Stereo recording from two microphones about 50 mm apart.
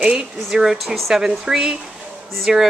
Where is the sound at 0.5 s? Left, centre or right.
Centre.